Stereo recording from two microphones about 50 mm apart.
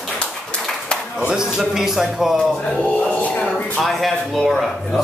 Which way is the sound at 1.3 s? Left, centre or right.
Centre.